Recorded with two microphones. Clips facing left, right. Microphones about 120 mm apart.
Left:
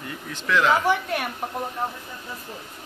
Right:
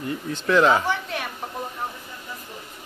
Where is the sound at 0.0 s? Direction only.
30° right (ahead or behind).